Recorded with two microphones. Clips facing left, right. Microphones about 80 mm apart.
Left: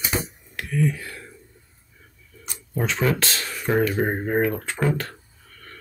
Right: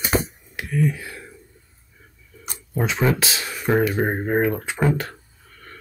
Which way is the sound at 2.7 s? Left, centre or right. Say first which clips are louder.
Right 2 dB; centre.